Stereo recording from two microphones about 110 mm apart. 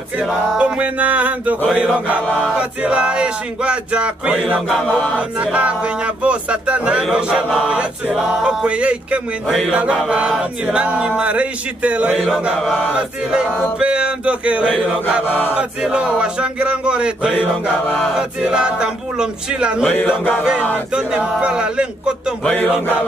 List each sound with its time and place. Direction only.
0.3 s chant: 10° right (ahead or behind)
2.2 s choir: 5° left (ahead or behind)
2.8 s chant: 10° right (ahead or behind)
15.2 s mantra: 20° left (ahead or behind)
15.5 s chant: 10° right (ahead or behind)
17.4 s mantra: 10° left (ahead or behind)
18.5 s chant: 10° right (ahead or behind)
20.9 s chant: 10° right (ahead or behind)
22.4 s mantra: 15° left (ahead or behind)